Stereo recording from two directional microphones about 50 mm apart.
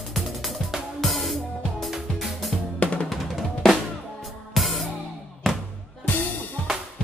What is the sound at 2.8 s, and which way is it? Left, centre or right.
Drum, left.